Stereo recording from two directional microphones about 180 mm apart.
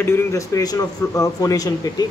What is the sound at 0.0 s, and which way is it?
A man's voice, 15° left (ahead or behind).